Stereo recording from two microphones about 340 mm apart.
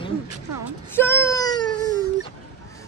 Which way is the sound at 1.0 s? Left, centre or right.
Centre.